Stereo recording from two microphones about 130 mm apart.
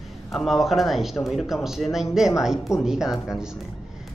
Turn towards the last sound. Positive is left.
turn(degrees=-5)  # may be behind; listen again after turning